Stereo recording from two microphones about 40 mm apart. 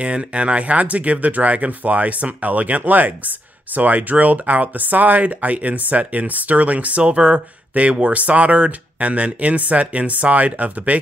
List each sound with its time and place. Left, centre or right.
0.0 s speech: right